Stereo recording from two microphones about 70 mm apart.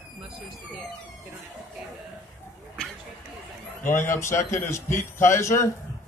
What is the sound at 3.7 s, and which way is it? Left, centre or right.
A man's voice, left.